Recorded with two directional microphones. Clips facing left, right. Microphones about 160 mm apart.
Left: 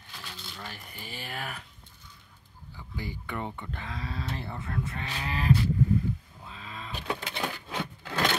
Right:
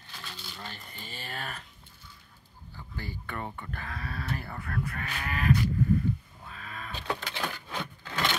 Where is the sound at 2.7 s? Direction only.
15° left (ahead or behind); by 5.7 s 30° left (ahead or behind).